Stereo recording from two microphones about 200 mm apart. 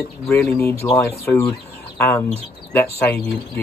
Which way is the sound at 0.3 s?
10° left (ahead or behind).